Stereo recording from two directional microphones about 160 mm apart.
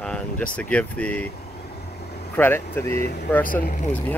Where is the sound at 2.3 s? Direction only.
15° left (ahead or behind).